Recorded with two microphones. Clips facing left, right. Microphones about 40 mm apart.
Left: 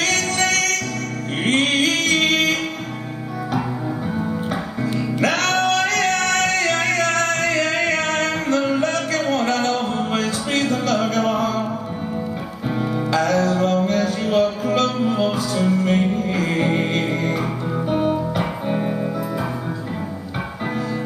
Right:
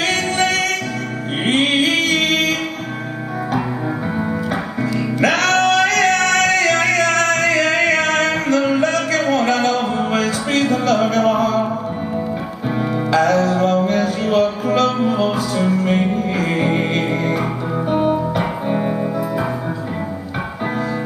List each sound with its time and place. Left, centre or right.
0.0 s music: right; by 2.5 s centre
5.2 s music: centre
12.7 s music: centre